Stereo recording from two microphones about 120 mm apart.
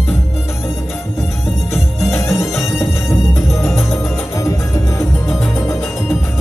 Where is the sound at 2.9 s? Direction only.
25° left (ahead or behind).